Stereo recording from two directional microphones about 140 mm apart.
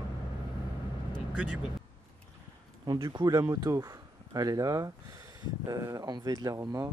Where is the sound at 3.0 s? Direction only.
35° right (ahead or behind).